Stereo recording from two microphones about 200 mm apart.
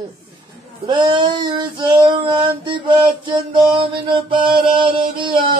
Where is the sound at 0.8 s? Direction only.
25° right (ahead or behind).